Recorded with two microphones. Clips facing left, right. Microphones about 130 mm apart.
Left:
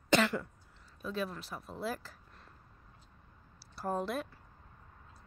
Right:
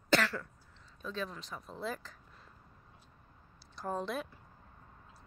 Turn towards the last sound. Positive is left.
turn(degrees=5)  # may be behind; listen again after turning